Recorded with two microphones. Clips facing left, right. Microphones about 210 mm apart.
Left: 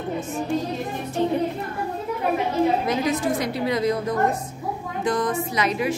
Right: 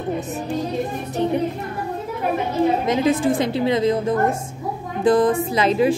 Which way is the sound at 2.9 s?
25° right (ahead or behind).